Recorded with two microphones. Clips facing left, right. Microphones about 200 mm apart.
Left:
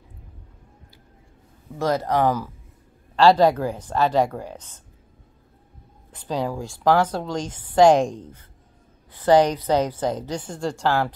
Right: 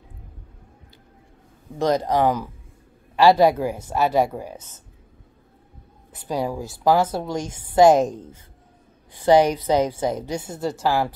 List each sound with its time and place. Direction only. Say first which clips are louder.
1.8 s a woman's voice: right 2 dB; 15° right (ahead or behind)
6.1 s a woman's voice: right 1 dB; 10° right (ahead or behind)